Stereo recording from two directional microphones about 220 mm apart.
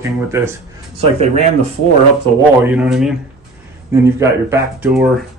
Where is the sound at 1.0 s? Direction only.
30° right (ahead or behind).